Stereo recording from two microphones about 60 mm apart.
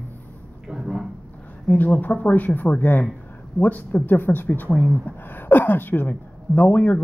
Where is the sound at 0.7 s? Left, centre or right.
Centre.